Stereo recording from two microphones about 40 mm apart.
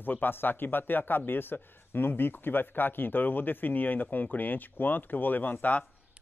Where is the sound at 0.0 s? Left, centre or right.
Left.